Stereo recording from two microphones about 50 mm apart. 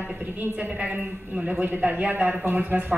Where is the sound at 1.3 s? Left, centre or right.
Right.